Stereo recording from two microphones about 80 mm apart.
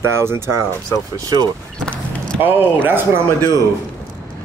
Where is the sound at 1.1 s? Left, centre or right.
Right.